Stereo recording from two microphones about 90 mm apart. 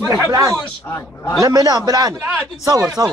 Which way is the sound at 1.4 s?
45° right (ahead or behind).